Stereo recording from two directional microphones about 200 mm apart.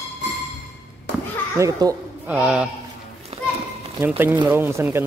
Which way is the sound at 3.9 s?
10° right (ahead or behind).